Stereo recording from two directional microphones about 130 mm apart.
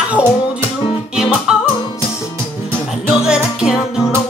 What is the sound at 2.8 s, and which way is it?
Music, centre (ahead or behind).